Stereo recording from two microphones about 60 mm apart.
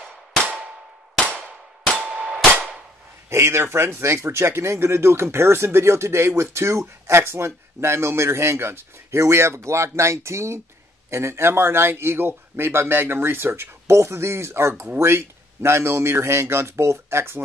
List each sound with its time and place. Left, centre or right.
2.0 s clang: centre
3.3 s a man's voice: right